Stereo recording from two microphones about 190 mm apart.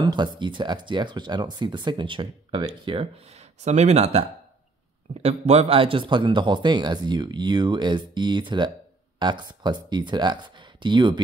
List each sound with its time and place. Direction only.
0.0 s speech: 25° right (ahead or behind)